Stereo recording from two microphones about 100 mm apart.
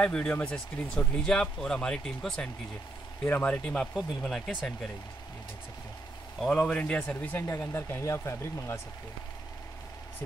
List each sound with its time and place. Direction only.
0.0 s speech: 10° left (ahead or behind)
3.3 s speech: 20° left (ahead or behind)
3.9 s speech: 5° right (ahead or behind)
6.4 s speech: centre (ahead or behind)
6.8 s speech: 15° left (ahead or behind)
7.4 s speech: 25° left (ahead or behind)